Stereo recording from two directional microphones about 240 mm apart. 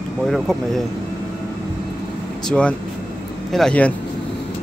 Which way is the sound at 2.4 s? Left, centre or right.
Centre.